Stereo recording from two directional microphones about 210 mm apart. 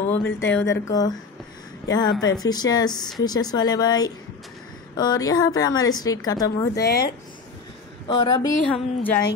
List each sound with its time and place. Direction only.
0.0 s a woman's voice: 10° left (ahead or behind)
8.1 s a woman's voice: 20° left (ahead or behind)
8.7 s speech: 5° left (ahead or behind)